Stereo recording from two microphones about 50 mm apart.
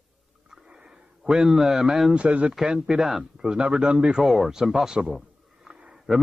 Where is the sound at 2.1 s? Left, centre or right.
Right.